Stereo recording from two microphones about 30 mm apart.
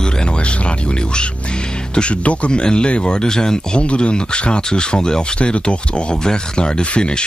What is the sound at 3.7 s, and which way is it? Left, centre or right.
Speech, left.